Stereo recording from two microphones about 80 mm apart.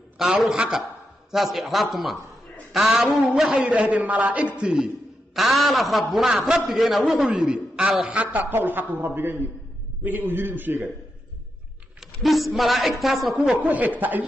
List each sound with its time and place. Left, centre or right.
0.2 s a woman's voice: centre; by 10.9 s right
12.0 s a woman's voice: centre
13.6 s a man's voice: right